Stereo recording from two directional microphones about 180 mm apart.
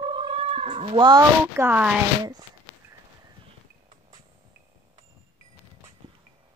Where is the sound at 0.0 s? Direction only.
25° right (ahead or behind).